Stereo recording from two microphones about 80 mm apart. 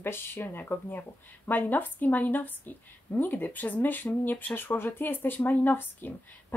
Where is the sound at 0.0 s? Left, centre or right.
Left.